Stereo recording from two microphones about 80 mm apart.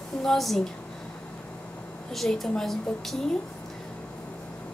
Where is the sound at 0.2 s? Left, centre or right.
Centre.